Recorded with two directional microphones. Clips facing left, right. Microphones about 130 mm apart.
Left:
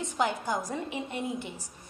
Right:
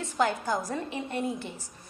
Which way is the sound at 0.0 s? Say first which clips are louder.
Right 2 dB; 15° left (ahead or behind).